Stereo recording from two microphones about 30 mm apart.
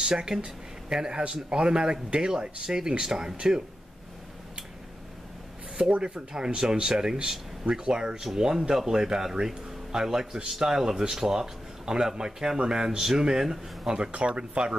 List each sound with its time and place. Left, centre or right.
0.3 s speech: right
5.9 s speech: right
6.1 s speech: right
8.2 s speech: centre; by 14.8 s right